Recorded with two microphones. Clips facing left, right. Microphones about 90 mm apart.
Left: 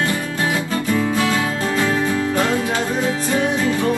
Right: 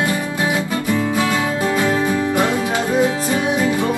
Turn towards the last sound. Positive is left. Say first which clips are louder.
# right 1 dB
turn(degrees=-15)  # may be behind; listen again after turning